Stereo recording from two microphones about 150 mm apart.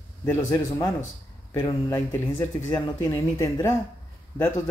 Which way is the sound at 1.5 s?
15° left (ahead or behind).